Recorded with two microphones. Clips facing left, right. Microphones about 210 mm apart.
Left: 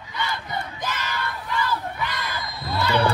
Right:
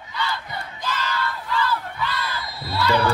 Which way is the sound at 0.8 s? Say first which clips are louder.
Right 2 dB; 20° left (ahead or behind).